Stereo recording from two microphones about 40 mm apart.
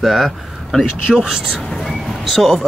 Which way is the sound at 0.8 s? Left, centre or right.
Centre.